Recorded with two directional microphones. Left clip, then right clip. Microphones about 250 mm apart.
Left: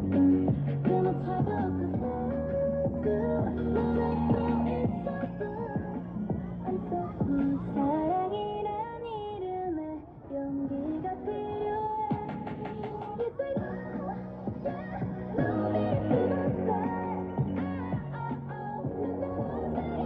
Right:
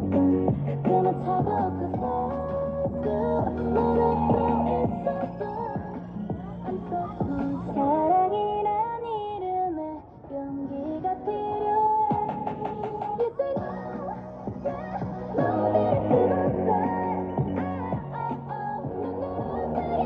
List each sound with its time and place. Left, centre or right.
0.1 s music: right
7.2 s music: centre
11.2 s music: centre
15.3 s music: centre
19.6 s hum: centre